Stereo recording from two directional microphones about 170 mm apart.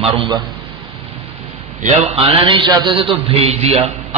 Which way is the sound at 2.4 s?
30° right (ahead or behind).